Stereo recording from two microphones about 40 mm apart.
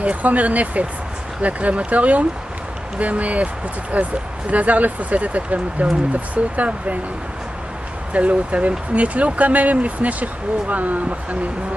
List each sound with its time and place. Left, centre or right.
0.0 s speech: right
8.1 s speech: right